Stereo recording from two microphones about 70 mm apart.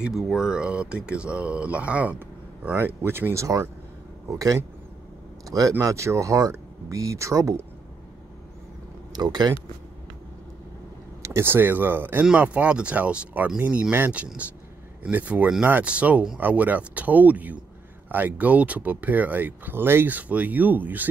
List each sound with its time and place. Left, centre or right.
0.0 s speech: centre; by 3.0 s right
3.0 s speech: right
4.3 s speech: right
9.1 s speech: right
11.2 s speech: right